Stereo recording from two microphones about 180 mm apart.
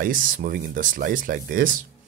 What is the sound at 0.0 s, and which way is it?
Speech, 50° right (ahead or behind).